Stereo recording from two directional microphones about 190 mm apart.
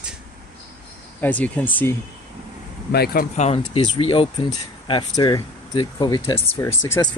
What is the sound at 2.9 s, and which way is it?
Speech, 55° left (ahead or behind).